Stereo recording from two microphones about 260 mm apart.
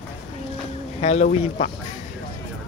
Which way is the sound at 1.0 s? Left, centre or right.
Left.